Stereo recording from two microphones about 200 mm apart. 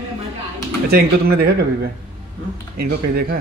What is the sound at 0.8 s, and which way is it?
A man's voice, 50° right (ahead or behind).